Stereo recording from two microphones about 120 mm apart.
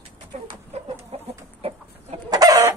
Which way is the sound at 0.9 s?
55° right (ahead or behind).